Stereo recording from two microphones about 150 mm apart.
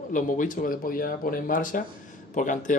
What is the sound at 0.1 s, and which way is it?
Speech, 60° left (ahead or behind).